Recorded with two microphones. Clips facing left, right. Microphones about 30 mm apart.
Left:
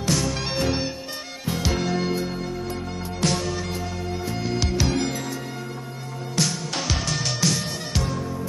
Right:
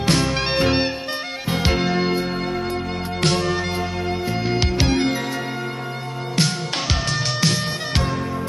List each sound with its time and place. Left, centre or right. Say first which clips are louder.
0.0 s music: right 5 dB; right
3.2 s music: right 4 dB; right
4.3 s music: right 2 dB; right
6.3 s music: right 3 dB; right